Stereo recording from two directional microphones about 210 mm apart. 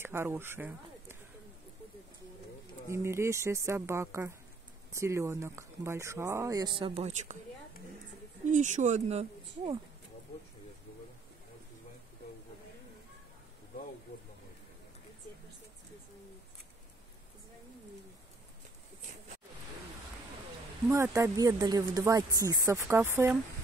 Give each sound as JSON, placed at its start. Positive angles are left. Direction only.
{"t": 0.0, "sound": "speech", "side_deg": -10}
{"t": 2.9, "sound": "speech", "side_deg": -10}
{"t": 8.5, "sound": "speech", "side_deg": -35}
{"t": 21.2, "sound": "speech", "side_deg": -15}